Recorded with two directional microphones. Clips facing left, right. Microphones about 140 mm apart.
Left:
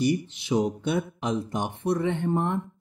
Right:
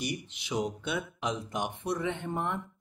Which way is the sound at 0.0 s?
30° left (ahead or behind).